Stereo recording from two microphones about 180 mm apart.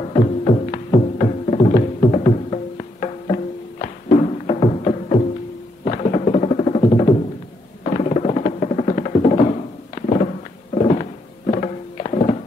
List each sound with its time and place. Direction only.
0.0 s music: 35° left (ahead or behind)
5.9 s a sound: 40° left (ahead or behind)
7.8 s music: 40° left (ahead or behind)